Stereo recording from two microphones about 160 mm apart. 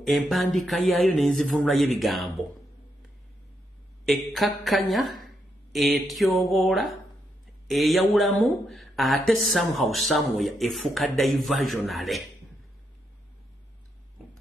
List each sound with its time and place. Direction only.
0.2 s speech: centre (ahead or behind)
4.1 s speech: centre (ahead or behind)